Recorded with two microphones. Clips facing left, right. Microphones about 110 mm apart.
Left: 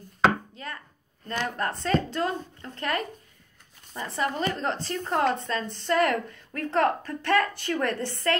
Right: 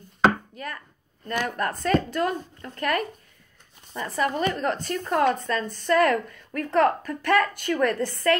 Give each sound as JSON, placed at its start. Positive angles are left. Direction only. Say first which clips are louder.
{"t": 0.6, "sound": "a woman's voice", "louder": "right 3 dB", "side_deg": 25}